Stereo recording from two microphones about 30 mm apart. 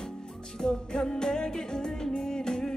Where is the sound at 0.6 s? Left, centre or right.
Left.